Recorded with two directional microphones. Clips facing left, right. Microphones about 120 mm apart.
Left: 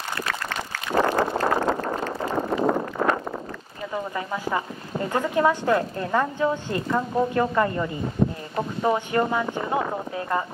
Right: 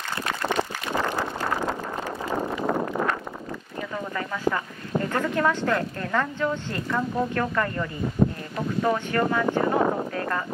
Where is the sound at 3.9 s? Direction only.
20° left (ahead or behind).